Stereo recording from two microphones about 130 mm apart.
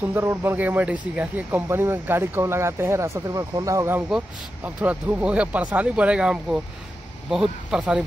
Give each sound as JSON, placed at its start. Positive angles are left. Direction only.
{"t": 0.0, "sound": "speech", "side_deg": -15}
{"t": 4.6, "sound": "speech", "side_deg": -10}